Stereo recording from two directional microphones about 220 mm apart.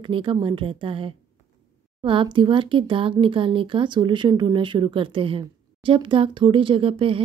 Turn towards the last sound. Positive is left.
turn(degrees=-25)  # may be behind; listen again after turning